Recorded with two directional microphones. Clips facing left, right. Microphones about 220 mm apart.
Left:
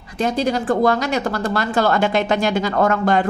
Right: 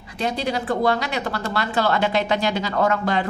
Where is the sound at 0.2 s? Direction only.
45° left (ahead or behind).